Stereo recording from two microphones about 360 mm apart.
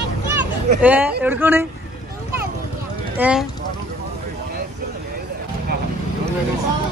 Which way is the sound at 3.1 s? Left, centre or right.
Centre.